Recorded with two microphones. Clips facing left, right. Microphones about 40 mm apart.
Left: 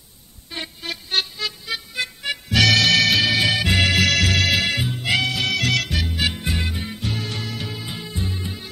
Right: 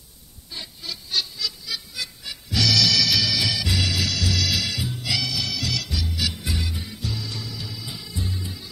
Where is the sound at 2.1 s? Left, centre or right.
Left.